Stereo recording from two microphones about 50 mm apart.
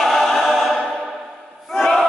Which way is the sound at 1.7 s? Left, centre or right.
Centre.